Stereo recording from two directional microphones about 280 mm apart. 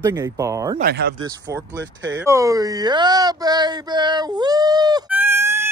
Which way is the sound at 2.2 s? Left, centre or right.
Centre.